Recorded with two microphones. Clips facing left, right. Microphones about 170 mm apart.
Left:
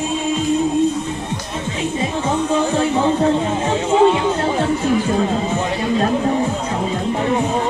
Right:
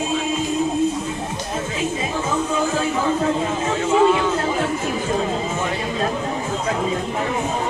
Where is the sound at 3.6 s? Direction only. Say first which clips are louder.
Left 2 dB; 30° left (ahead or behind).